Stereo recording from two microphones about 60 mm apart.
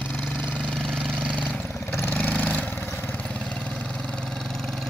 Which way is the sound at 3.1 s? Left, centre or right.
Centre.